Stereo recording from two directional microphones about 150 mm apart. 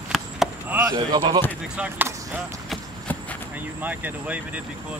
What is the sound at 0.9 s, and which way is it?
Speech, 30° right (ahead or behind).